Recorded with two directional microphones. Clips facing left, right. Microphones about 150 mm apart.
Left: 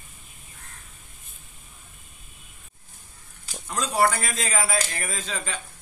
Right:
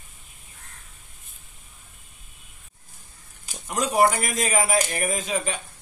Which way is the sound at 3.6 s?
15° right (ahead or behind).